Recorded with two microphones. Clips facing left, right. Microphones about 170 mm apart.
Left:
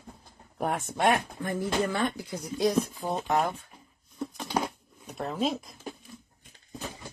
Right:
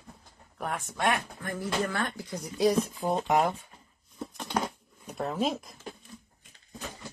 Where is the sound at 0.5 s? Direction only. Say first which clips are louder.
Left 5 dB; 40° left (ahead or behind).